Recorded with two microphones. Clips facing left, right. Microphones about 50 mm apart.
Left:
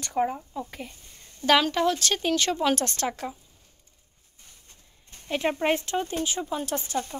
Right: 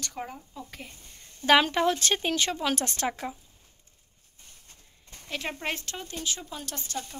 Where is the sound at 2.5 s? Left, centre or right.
Centre.